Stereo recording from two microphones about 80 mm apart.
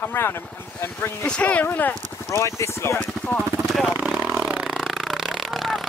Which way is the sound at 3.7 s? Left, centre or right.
Centre.